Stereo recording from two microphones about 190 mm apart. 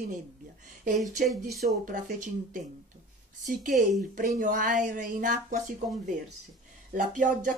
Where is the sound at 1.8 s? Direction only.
45° right (ahead or behind).